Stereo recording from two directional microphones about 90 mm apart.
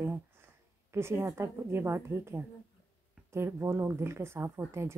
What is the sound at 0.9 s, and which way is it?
A woman's voice, 30° right (ahead or behind).